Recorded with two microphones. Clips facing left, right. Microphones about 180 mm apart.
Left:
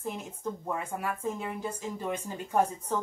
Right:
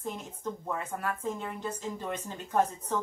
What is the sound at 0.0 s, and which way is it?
A woman's voice, 10° left (ahead or behind).